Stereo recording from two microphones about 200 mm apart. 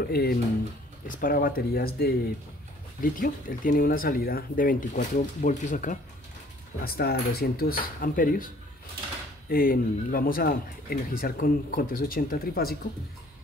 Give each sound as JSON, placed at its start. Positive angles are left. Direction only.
{"t": 0.0, "sound": "a man's voice", "side_deg": 50}
{"t": 6.8, "sound": "a man's voice", "side_deg": 50}
{"t": 9.5, "sound": "a man's voice", "side_deg": 45}